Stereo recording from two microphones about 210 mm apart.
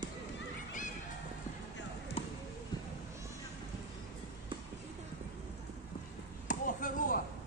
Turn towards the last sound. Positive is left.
turn(degrees=40)  # may be behind; listen again after turning